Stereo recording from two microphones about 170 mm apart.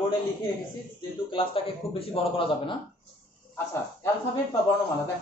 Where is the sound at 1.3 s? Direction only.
30° left (ahead or behind).